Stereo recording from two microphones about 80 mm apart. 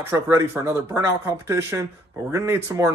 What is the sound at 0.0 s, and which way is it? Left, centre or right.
Speech, right.